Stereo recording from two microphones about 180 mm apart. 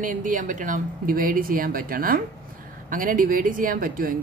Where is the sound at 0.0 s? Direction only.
45° right (ahead or behind).